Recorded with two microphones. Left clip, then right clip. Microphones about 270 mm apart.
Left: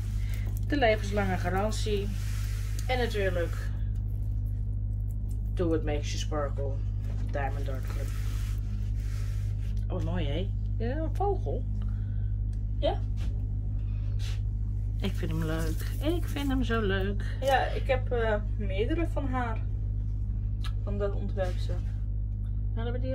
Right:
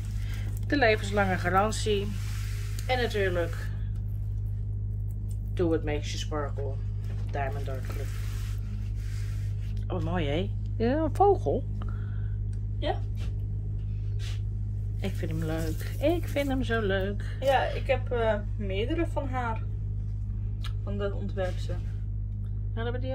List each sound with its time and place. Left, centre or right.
0.7 s speech: centre
5.6 s speech: centre
9.8 s speech: centre
15.0 s speech: centre
20.6 s speech: centre
22.8 s speech: centre